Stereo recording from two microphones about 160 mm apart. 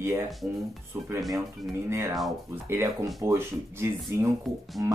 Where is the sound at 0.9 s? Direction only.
15° right (ahead or behind).